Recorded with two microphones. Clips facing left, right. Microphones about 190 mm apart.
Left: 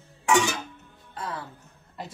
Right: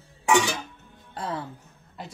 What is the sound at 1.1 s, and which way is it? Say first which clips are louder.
Speech: right 3 dB; 30° right (ahead or behind).